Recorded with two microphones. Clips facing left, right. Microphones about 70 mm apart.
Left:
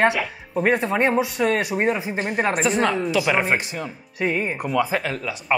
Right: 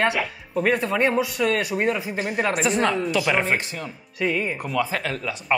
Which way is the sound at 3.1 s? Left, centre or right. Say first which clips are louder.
Left 1 dB; centre.